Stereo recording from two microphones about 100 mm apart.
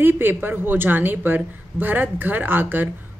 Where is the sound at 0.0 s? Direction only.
20° right (ahead or behind).